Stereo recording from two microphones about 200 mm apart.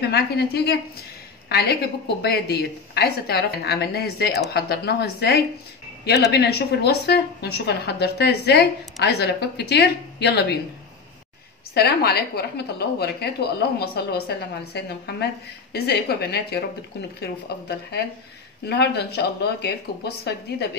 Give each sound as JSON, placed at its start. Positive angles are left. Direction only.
{"t": 0.0, "sound": "a woman's voice", "side_deg": 55}
{"t": 11.7, "sound": "a woman's voice", "side_deg": 50}